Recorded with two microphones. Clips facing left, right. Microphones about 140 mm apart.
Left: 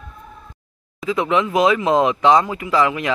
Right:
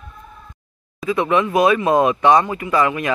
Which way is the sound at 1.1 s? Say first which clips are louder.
Right 1 dB; 15° left (ahead or behind).